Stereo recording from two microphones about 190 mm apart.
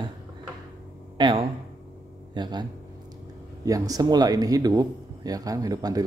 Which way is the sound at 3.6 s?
20° right (ahead or behind).